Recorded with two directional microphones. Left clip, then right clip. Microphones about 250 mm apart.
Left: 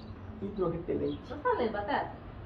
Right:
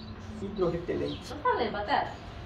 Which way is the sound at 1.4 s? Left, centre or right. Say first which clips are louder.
Right 2 dB; centre.